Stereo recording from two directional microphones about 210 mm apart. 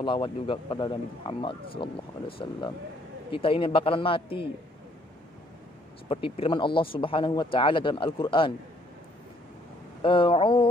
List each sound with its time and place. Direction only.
0.0 s a man's voice: 25° left (ahead or behind)
6.0 s a man's voice: 25° left (ahead or behind)
10.0 s a sound: 25° left (ahead or behind)